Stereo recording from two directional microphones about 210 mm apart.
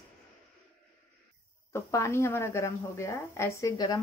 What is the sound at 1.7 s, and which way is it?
A woman's voice, 10° left (ahead or behind).